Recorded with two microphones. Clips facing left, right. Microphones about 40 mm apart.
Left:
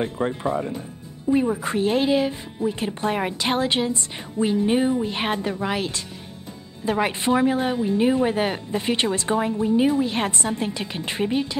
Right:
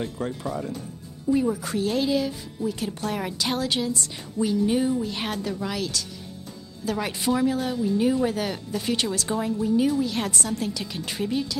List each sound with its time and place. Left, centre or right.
0.0 s speech: left